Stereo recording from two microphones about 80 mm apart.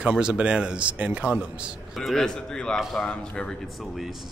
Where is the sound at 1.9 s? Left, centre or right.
Centre.